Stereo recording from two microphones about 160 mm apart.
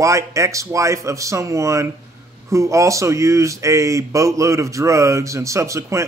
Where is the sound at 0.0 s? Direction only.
20° right (ahead or behind).